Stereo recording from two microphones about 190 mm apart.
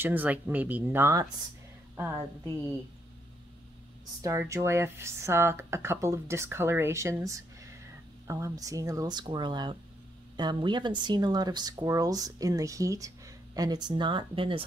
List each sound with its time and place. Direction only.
0.0 s speech: 10° right (ahead or behind)
4.2 s speech: 15° right (ahead or behind)